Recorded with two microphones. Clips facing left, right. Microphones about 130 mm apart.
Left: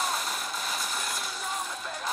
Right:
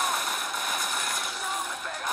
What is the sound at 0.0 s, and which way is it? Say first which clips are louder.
Vehicle: right 2 dB; 55° right (ahead or behind).